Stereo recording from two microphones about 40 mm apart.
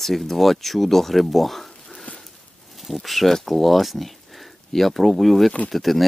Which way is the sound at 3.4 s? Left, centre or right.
Centre.